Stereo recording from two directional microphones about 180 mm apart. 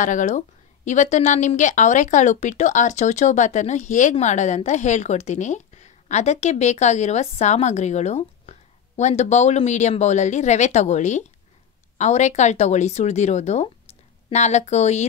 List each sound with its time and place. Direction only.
0.0 s a woman's voice: 45° left (ahead or behind)